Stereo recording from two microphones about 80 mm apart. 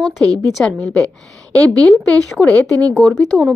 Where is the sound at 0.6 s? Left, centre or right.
Left.